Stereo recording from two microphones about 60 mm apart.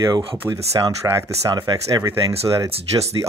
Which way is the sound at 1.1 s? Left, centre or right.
Right.